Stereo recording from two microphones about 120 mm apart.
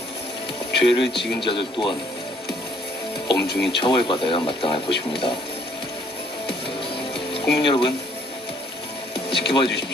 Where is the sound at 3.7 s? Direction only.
45° left (ahead or behind).